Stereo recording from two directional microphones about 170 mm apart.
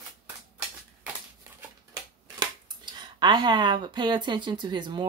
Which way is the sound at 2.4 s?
25° right (ahead or behind).